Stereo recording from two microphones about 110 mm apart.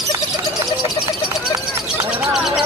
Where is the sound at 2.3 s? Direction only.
5° right (ahead or behind).